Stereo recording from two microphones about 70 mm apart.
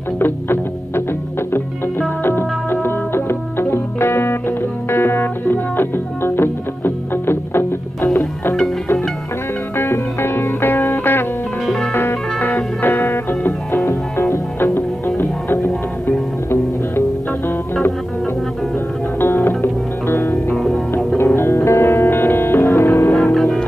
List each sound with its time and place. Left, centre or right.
0.2 s music: left
9.8 s music: left
11.6 s music: centre
11.9 s music: left
19.1 s music: left
20.5 s music: centre
21.4 s music: left
23.1 s music: centre